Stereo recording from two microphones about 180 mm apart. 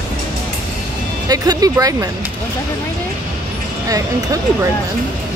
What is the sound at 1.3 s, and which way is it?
Speech, 20° right (ahead or behind).